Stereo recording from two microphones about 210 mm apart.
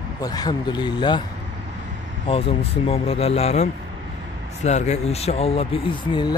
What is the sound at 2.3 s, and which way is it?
Speech, 25° left (ahead or behind).